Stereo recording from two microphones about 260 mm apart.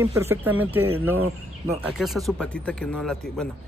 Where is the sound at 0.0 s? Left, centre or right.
Centre.